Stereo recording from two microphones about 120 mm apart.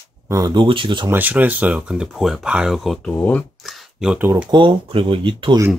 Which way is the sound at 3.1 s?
15° left (ahead or behind).